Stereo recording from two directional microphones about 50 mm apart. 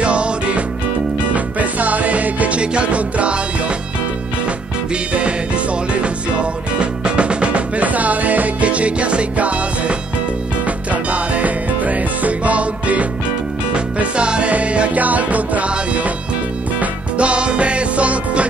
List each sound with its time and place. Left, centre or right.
0.0 s music: right
6.0 s music: right